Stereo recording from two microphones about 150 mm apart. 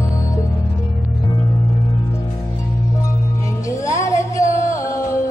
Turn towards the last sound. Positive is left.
turn(degrees=20)  # may be behind; listen again after turning